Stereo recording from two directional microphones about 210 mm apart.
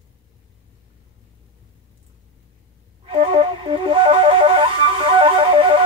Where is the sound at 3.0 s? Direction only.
25° right (ahead or behind).